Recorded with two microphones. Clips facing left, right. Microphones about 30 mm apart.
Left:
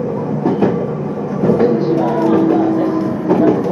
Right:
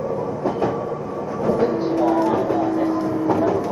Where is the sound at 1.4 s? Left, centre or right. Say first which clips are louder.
Left 6 dB; centre.